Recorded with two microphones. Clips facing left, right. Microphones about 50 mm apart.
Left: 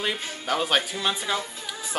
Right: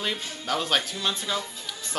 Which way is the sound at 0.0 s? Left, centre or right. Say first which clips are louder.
Left 2 dB; centre.